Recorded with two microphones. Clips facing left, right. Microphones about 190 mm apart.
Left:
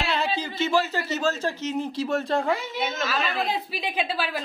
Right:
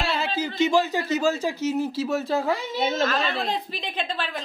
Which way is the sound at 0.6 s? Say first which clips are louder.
Right 3 dB; 15° right (ahead or behind).